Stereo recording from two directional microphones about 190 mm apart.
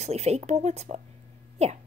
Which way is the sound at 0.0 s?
35° right (ahead or behind).